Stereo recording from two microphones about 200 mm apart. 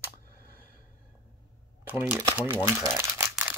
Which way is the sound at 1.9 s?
10° right (ahead or behind).